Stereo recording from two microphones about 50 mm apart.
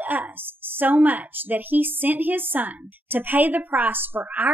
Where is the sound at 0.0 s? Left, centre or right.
Right.